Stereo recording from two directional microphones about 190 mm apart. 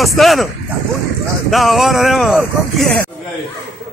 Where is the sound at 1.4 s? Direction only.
Centre (ahead or behind).